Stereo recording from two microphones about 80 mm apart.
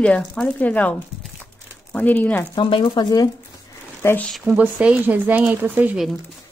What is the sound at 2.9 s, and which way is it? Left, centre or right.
Speech, left.